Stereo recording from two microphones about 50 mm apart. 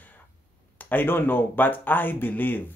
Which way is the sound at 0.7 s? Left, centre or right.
Left.